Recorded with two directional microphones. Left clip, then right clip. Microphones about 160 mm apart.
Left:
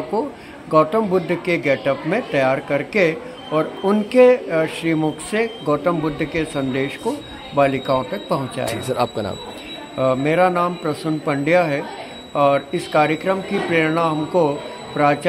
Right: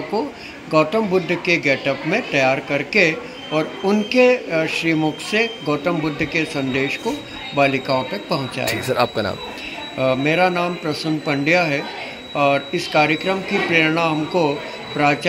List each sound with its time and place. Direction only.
0.1 s speech: 20° left (ahead or behind)
8.6 s speech: 5° left (ahead or behind)
9.9 s speech: 15° left (ahead or behind)